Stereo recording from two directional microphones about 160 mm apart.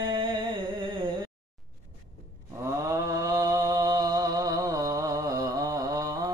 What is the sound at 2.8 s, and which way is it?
Mantra, 20° right (ahead or behind).